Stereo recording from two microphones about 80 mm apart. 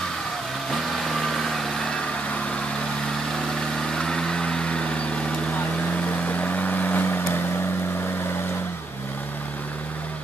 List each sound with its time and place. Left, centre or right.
0.7 s vehicle: centre
3.7 s vehicle: centre
6.2 s vehicle: centre